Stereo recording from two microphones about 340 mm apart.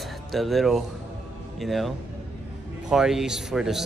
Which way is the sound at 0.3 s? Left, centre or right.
Centre.